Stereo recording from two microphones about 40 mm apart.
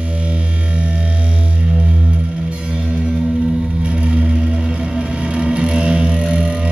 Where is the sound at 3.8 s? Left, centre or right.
Right.